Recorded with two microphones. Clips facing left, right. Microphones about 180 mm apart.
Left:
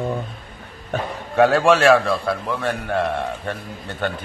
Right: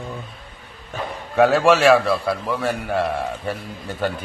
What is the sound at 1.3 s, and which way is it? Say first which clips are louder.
A man's voice: even; centre (ahead or behind).